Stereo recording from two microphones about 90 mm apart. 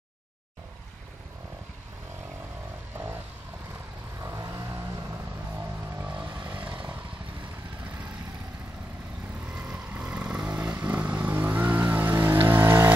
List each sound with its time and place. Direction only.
4.2 s vehicle: 35° right (ahead or behind)
5.9 s vehicle: 20° right (ahead or behind)
9.5 s vehicle: 15° right (ahead or behind)